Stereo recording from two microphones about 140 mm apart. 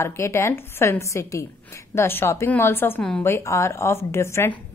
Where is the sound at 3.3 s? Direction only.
20° left (ahead or behind).